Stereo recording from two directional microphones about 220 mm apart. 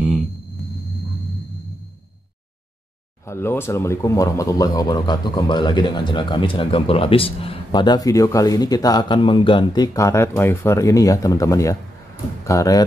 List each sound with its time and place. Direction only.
3.3 s speech: 10° left (ahead or behind)